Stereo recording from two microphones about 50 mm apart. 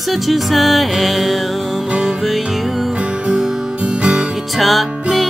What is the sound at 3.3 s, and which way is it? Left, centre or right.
Music, centre.